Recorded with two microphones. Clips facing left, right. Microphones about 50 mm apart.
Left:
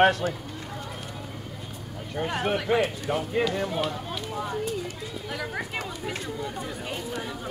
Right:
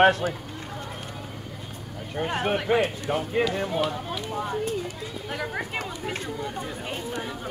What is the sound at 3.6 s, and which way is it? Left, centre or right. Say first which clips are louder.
Speech: right 2 dB; centre.